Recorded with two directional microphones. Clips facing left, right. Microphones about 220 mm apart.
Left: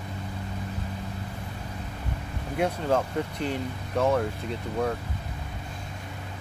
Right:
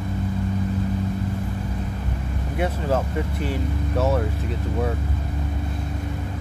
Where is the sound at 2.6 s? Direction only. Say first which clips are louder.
Right 1 dB; 5° right (ahead or behind).